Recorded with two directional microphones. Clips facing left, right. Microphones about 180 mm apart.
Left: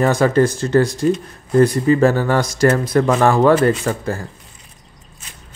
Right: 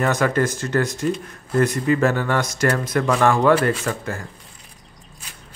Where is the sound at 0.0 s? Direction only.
30° left (ahead or behind).